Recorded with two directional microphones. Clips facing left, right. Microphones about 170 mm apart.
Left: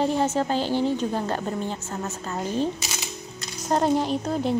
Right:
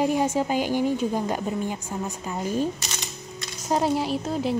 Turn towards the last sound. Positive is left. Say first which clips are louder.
# left 1 dB
turn(degrees=0)  # may be behind; listen again after turning